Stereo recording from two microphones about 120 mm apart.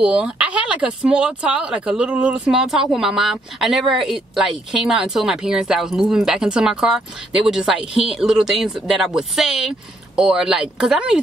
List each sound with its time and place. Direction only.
0.0 s speech: 10° right (ahead or behind)